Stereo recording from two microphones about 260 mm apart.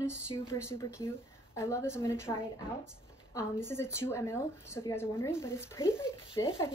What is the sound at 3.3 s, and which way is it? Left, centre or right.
Speech, centre.